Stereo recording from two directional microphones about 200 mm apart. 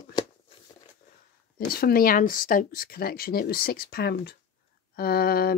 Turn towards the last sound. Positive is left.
turn(degrees=50)  # may be behind; listen again after turning